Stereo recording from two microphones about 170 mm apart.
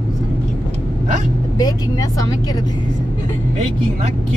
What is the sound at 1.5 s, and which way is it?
Speech, 20° left (ahead or behind).